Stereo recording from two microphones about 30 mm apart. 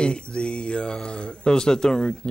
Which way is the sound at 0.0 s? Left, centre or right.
Left.